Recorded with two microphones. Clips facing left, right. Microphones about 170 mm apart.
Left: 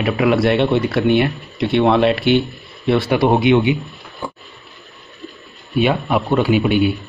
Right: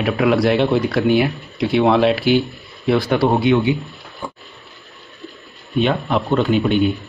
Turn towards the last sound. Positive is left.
turn(degrees=10)  # may be behind; listen again after turning